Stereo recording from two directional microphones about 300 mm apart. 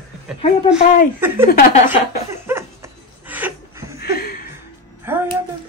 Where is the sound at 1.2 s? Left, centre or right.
Centre.